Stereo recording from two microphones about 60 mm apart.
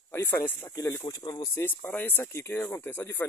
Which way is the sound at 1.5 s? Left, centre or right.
Left.